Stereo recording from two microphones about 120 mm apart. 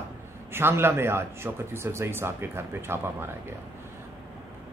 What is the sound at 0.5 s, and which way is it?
Speech, 20° right (ahead or behind).